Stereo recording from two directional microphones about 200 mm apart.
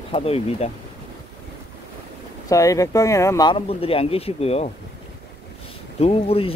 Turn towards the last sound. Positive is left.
turn(degrees=30)  # may be behind; listen again after turning